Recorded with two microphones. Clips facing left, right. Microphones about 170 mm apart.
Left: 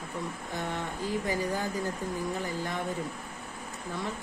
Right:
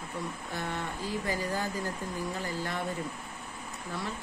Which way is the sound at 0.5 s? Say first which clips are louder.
Left 2 dB; 15° left (ahead or behind).